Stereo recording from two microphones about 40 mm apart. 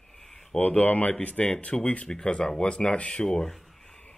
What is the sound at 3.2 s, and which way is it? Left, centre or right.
Speech, centre.